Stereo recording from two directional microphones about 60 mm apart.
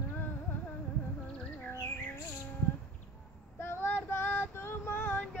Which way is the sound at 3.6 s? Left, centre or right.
Left.